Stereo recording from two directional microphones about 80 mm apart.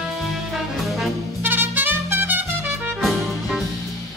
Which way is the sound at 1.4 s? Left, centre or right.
Right.